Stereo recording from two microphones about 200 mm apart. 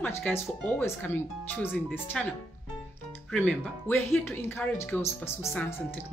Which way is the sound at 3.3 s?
10° left (ahead or behind).